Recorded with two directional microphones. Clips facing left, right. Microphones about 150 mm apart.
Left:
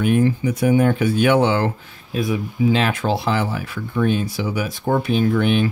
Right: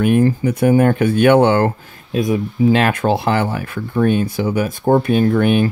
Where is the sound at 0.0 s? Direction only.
50° right (ahead or behind).